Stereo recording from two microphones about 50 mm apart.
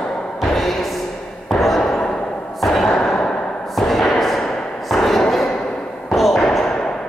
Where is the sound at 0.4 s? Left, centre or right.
Centre.